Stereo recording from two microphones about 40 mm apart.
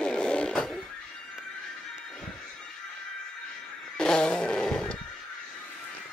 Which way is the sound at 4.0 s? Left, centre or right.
Left.